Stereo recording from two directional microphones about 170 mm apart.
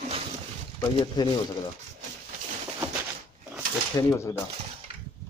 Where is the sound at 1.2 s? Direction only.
25° left (ahead or behind).